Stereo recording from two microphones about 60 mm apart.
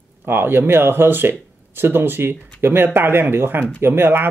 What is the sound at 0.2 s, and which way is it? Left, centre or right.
Speech, right.